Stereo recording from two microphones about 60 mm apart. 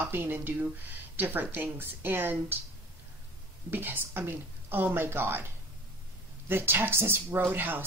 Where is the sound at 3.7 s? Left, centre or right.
Right.